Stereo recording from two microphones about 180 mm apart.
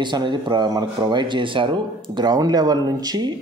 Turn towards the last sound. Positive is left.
turn(degrees=-25)  # may be behind; listen again after turning